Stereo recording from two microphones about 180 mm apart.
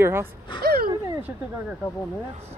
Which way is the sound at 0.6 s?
60° right (ahead or behind).